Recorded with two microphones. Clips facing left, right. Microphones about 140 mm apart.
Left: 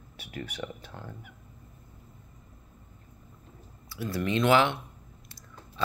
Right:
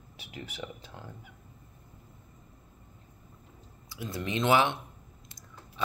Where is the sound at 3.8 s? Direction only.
20° right (ahead or behind).